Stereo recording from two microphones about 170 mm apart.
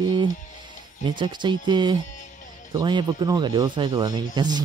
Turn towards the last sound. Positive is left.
turn(degrees=-25)  # may be behind; listen again after turning